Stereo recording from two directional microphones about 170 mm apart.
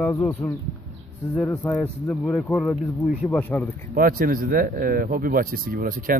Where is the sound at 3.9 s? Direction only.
55° right (ahead or behind).